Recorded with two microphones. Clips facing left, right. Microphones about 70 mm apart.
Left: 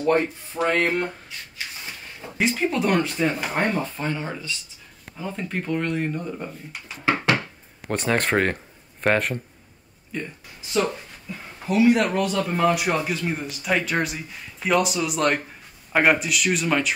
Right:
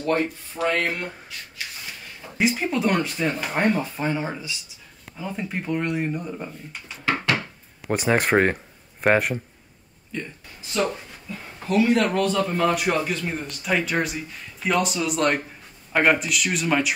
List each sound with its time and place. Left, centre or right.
0.0 s speech: left
2.3 s speech: centre
5.1 s speech: centre
7.9 s speech: centre
10.7 s speech: centre